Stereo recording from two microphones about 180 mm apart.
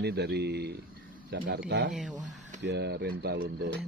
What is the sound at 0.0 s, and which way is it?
Speech, 65° right (ahead or behind).